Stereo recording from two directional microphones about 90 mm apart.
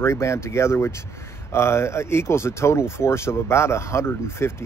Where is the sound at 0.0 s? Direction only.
30° left (ahead or behind).